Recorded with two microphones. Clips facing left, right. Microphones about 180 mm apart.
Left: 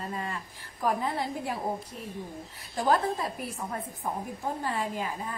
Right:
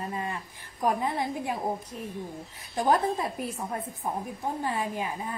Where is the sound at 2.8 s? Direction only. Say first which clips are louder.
Right 1 dB; 20° right (ahead or behind).